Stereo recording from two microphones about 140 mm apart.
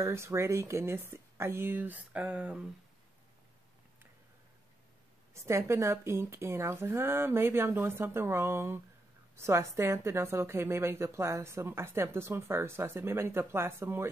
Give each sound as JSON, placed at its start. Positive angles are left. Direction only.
{"t": 0.0, "sound": "a woman's voice", "side_deg": -20}
{"t": 5.3, "sound": "a woman's voice", "side_deg": -20}